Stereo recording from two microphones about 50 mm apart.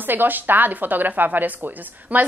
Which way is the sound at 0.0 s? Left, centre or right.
Right.